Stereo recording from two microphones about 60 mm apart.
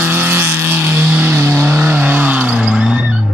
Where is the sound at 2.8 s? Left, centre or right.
Centre.